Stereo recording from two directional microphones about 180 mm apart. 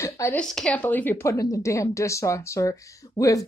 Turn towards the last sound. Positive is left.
turn(degrees=20)  # may be behind; listen again after turning